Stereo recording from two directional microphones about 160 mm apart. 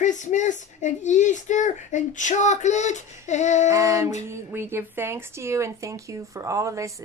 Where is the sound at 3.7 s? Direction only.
20° right (ahead or behind).